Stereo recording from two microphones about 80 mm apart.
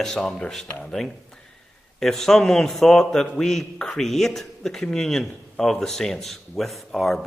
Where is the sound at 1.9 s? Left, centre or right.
Centre.